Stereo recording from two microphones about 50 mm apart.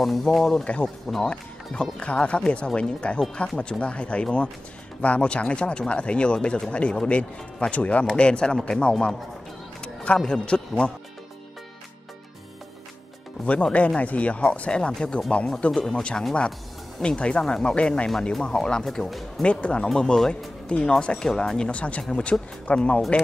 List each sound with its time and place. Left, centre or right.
0.0 s speech: centre
1.2 s speech: centre
9.8 s a sound: centre
13.5 s speech: left
18.9 s speech: centre
19.4 s speech: left